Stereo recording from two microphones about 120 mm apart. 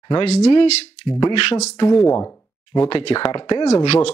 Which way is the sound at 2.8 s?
40° left (ahead or behind).